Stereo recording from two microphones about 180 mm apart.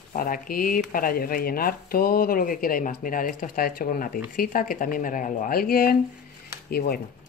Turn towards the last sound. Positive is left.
turn(degrees=60)  # may be behind; listen again after turning